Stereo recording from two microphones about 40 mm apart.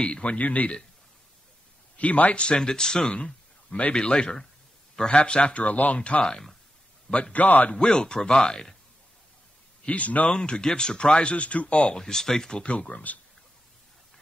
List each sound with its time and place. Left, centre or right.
0.0 s a man's voice: left
2.0 s a man's voice: left
2.3 s a man's voice: left
5.9 s speech: left
7.3 s a man's voice: left
7.7 s speech: centre
9.8 s a man's voice: left
10.3 s speech: left
12.0 s speech: centre
12.6 s a man's voice: left